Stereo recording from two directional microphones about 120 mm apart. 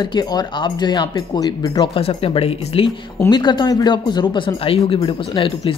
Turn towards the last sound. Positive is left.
turn(degrees=50)  # may be behind; listen again after turning